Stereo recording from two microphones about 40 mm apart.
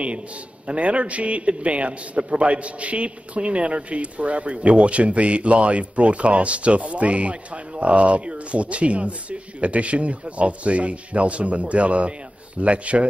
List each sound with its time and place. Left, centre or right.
0.7 s a man's voice: right